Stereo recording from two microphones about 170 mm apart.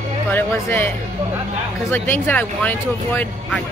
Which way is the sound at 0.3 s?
10° left (ahead or behind).